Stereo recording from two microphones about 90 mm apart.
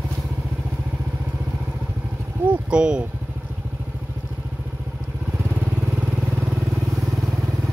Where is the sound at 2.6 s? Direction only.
10° right (ahead or behind).